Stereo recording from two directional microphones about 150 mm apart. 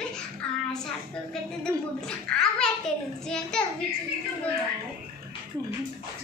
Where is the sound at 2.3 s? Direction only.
5° left (ahead or behind).